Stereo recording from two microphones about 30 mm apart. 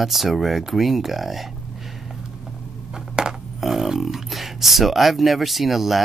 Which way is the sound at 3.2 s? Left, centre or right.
Right.